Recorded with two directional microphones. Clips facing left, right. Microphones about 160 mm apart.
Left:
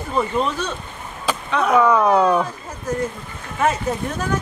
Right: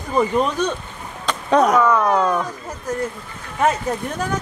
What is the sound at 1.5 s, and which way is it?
Speech, 40° right (ahead or behind).